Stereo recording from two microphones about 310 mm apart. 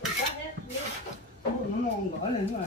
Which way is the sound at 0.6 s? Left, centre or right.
Right.